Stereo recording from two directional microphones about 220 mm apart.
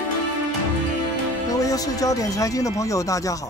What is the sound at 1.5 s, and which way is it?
Speech, 15° left (ahead or behind).